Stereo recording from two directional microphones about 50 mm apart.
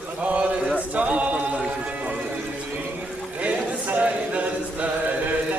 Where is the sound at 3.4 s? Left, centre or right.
Right.